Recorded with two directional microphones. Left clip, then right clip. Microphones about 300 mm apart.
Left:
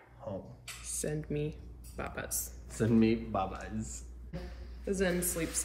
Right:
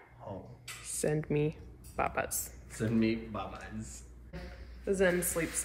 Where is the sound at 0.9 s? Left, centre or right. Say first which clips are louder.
Right 5 dB; right.